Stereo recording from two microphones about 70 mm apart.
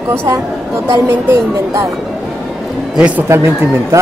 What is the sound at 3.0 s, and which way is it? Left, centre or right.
Speech, centre.